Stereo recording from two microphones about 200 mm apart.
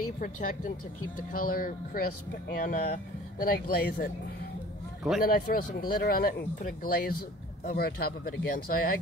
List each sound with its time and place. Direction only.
0.2 s speech: 45° left (ahead or behind)
5.2 s speech: 45° left (ahead or behind)